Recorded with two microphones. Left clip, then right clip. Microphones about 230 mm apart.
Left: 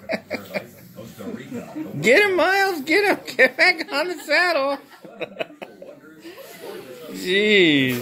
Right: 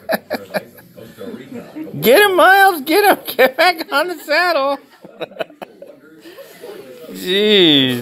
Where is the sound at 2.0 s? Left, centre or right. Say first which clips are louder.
Right 7 dB; centre.